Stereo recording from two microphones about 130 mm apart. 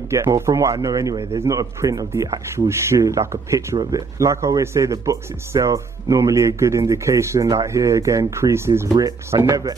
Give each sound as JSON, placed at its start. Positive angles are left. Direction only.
{"t": 0.1, "sound": "a man's voice", "side_deg": -20}